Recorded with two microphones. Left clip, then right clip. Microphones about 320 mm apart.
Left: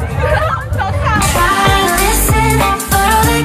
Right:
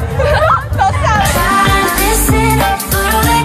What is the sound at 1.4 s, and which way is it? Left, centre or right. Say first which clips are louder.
Music: even; centre.